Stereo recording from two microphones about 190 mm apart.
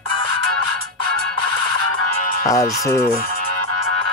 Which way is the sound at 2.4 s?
15° left (ahead or behind).